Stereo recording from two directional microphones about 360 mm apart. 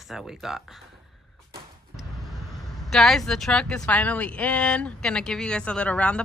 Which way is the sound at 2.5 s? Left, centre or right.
Centre.